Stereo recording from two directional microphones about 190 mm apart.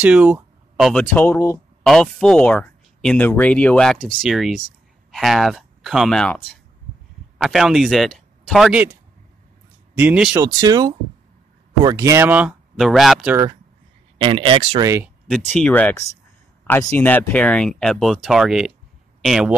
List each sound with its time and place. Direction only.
0.0 s speech: 5° right (ahead or behind)
9.9 s speech: 5° right (ahead or behind)
10.4 s speech: 20° right (ahead or behind)
14.1 s speech: 25° right (ahead or behind)
15.2 s speech: 5° left (ahead or behind)